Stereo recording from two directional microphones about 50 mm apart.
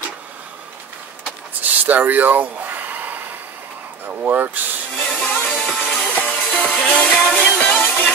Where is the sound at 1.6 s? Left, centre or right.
Right.